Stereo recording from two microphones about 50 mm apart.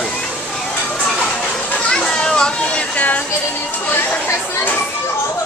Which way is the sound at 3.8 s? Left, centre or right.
Left.